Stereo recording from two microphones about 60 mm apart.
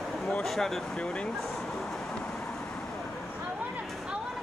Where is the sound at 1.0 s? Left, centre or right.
Centre.